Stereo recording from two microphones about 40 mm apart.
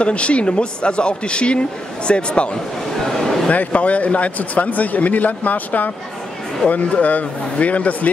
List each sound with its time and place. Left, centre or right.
0.0 s speech: left
3.1 s a sound: centre
3.5 s speech: left